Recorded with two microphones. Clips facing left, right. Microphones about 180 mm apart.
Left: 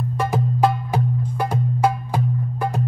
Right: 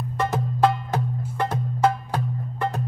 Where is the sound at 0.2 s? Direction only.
10° left (ahead or behind).